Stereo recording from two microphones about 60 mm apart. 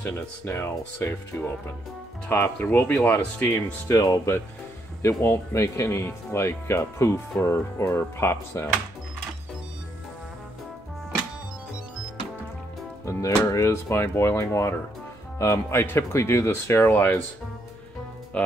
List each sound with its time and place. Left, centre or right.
0.0 s speech: left
2.9 s speech: left
3.4 s speech: left
3.9 s speech: left
5.0 s speech: left
13.0 s speech: left
13.4 s speech: left
13.7 s speech: left